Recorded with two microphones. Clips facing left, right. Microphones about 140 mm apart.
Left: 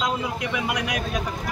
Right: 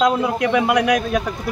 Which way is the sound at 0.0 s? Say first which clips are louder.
Right 9 dB; 55° right (ahead or behind).